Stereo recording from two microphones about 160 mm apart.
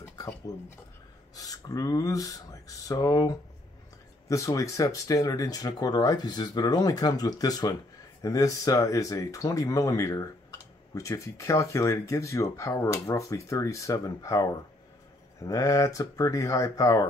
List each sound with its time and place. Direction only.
0.0 s speech: 15° left (ahead or behind)